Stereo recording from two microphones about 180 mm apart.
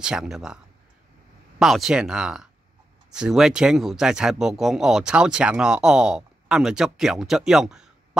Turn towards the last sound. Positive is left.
turn(degrees=-5)  # may be behind; listen again after turning